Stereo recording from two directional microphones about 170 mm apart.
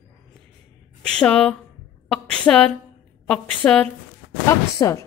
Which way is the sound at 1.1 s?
5° left (ahead or behind).